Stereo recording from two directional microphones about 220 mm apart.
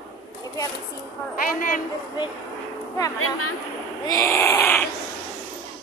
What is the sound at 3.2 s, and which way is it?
Speech, 90° left.